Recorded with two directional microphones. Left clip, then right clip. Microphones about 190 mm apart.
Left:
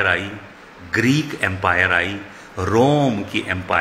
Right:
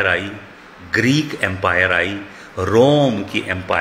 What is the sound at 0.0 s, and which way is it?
A man's voice, centre (ahead or behind).